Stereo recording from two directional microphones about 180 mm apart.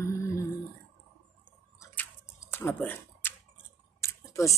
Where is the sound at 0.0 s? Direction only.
15° left (ahead or behind).